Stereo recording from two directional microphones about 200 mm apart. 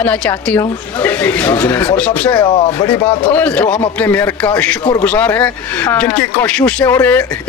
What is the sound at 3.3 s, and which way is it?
Speech, 5° left (ahead or behind).